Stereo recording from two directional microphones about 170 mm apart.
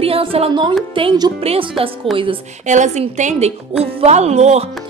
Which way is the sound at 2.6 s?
45° right (ahead or behind).